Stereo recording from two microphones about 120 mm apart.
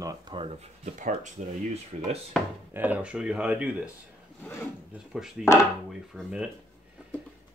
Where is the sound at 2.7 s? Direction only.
15° right (ahead or behind).